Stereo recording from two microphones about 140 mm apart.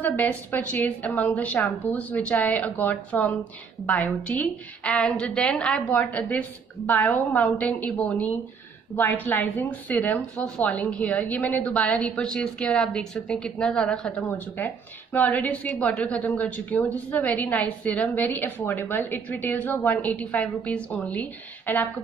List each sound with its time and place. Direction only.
0.0 s a woman's voice: 10° left (ahead or behind)
14.6 s a woman's voice: 15° left (ahead or behind)